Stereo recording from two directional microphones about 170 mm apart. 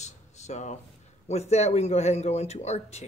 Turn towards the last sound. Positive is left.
turn(degrees=40)  # may be behind; listen again after turning